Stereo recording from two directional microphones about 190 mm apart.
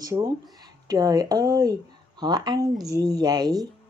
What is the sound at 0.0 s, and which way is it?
A woman's voice, 20° right (ahead or behind).